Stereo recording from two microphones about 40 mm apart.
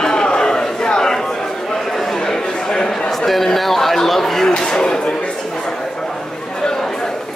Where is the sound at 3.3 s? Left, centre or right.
Centre.